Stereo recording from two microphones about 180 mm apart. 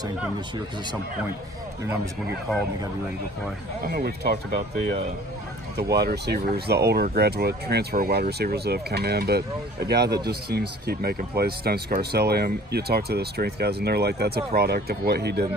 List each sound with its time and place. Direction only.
3.8 s speech: 60° right (ahead or behind)
5.8 s speech: 65° right (ahead or behind)